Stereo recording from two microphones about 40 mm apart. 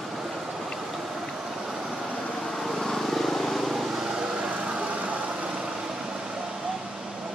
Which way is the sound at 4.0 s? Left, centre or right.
Centre.